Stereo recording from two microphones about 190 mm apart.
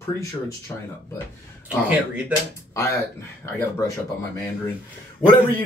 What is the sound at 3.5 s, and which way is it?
Speech, 15° left (ahead or behind).